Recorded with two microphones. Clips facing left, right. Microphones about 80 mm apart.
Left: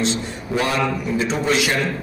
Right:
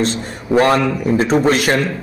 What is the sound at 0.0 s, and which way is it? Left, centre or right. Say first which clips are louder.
A man's voice: right 3 dB; right.